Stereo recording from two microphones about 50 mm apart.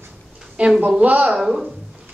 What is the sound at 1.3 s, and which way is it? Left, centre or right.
Speech, centre.